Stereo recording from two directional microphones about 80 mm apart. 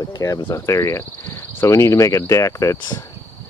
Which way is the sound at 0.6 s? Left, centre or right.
Left.